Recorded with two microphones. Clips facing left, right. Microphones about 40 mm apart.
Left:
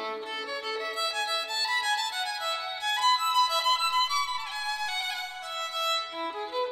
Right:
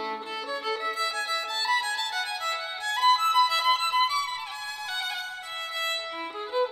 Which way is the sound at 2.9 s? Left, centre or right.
Centre.